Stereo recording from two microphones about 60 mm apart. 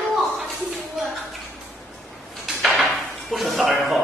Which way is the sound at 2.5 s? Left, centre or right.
Centre.